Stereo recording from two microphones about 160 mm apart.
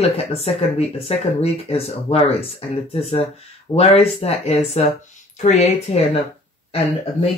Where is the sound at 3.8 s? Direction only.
40° left (ahead or behind).